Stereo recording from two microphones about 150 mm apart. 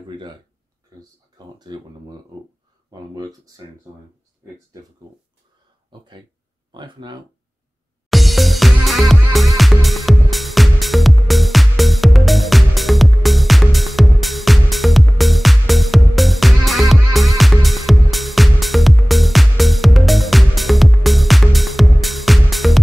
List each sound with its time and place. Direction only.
1.4 s speech: 25° right (ahead or behind)
2.9 s speech: 25° right (ahead or behind)
5.9 s speech: 30° right (ahead or behind)
8.1 s music: centre (ahead or behind)